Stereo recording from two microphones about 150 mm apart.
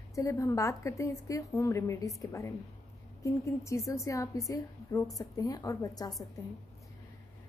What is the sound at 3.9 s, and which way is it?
A woman's voice, 20° left (ahead or behind).